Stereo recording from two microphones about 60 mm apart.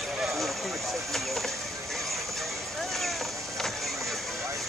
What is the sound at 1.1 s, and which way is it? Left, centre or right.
Chop, centre.